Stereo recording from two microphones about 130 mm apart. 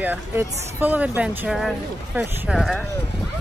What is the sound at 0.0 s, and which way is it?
Speech, 15° right (ahead or behind).